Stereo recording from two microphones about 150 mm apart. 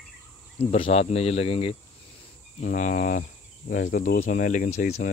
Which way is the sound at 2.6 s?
60° left (ahead or behind).